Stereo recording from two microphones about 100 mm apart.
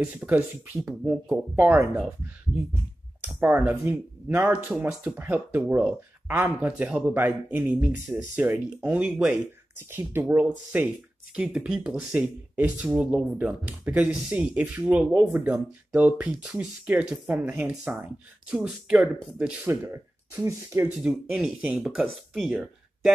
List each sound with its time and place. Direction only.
0.0 s speech: 15° right (ahead or behind)
1.6 s speech: 20° right (ahead or behind)
3.3 s speech: 15° right (ahead or behind)
4.6 s speech: 5° right (ahead or behind)
5.1 s speech: 20° right (ahead or behind)
11.3 s speech: 10° right (ahead or behind)
19.7 s speech: 25° right (ahead or behind)
21.0 s speech: 10° right (ahead or behind)